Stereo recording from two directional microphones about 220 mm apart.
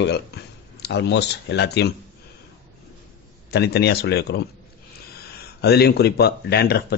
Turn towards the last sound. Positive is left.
turn(degrees=45)  # may be behind; listen again after turning